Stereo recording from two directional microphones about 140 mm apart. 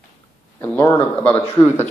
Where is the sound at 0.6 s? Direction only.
15° left (ahead or behind).